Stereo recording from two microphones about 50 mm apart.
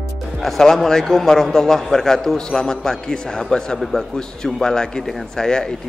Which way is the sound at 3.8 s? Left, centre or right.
Centre.